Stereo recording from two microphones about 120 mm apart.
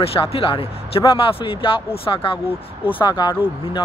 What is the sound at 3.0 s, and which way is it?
Speech, 35° left (ahead or behind).